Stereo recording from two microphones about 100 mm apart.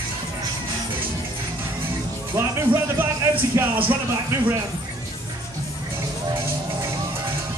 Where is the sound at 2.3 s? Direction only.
25° right (ahead or behind).